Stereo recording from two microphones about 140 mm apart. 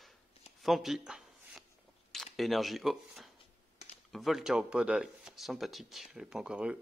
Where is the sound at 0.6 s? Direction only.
Centre (ahead or behind).